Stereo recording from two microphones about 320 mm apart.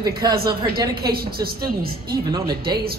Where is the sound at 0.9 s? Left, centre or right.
Right.